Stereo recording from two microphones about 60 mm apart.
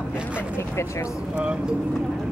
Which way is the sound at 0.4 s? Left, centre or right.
Left.